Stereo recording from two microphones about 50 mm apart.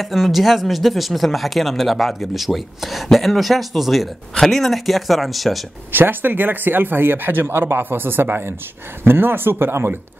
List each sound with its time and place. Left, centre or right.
0.0 s speech: centre
5.9 s speech: right